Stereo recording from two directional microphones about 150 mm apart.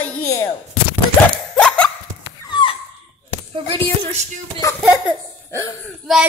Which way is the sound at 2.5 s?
35° left (ahead or behind).